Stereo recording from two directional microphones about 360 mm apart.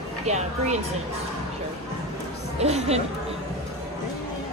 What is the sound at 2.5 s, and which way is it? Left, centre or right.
Speech, centre.